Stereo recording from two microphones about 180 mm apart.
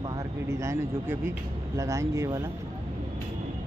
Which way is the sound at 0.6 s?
15° right (ahead or behind).